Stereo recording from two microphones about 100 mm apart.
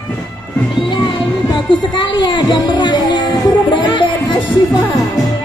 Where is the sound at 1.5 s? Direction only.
50° left (ahead or behind).